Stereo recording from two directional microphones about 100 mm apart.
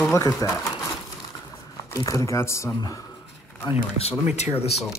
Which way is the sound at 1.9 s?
35° left (ahead or behind).